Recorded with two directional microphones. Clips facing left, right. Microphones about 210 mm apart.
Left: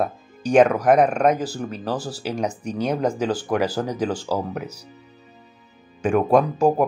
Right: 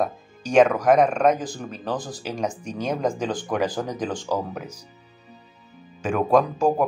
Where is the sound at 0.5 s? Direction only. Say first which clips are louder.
Left 1 dB; 10° left (ahead or behind).